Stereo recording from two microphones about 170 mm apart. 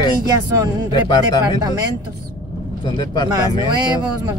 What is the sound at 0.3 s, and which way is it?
Speech, 20° right (ahead or behind).